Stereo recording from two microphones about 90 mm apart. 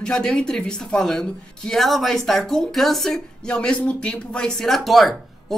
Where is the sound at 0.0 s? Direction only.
5° left (ahead or behind).